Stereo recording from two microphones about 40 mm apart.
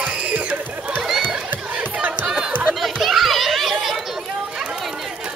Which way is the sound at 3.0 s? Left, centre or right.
Centre.